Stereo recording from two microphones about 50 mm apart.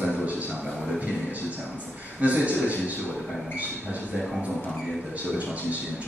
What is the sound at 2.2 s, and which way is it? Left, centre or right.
Speech, right.